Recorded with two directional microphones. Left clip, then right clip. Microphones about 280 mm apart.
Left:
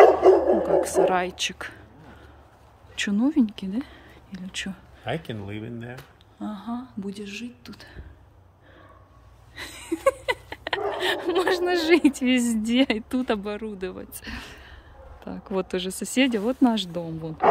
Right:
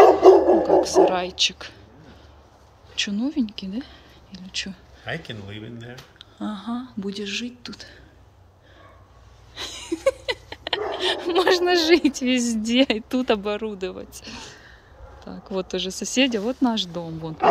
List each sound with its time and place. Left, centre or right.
0.0 s dog: right
0.8 s a woman's voice: centre
3.0 s speech: centre
5.0 s speech: left
6.1 s speech: centre
9.6 s a woman's voice: centre